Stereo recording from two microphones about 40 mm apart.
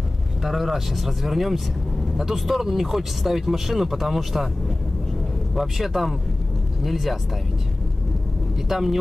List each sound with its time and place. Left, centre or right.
0.4 s speech: centre
5.5 s speech: centre
8.5 s speech: centre